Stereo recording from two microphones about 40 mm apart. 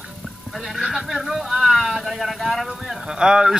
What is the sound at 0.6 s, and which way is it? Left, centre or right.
Speech, centre.